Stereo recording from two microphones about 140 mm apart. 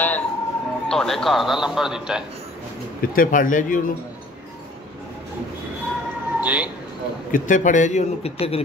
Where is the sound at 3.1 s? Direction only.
80° left.